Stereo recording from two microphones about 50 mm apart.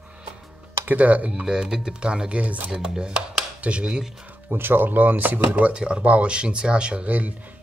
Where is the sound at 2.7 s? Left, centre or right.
Centre.